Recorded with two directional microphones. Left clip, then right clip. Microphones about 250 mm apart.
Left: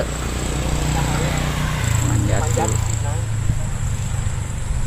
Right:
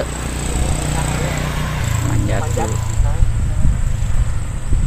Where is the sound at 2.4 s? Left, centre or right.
Centre.